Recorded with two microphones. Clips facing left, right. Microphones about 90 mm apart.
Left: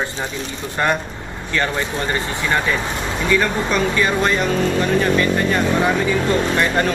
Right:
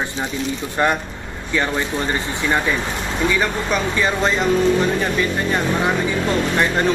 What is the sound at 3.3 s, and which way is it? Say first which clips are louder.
Speech: left 2 dB; 15° right (ahead or behind).